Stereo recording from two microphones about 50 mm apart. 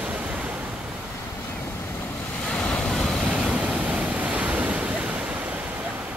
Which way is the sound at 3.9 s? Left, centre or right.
Right.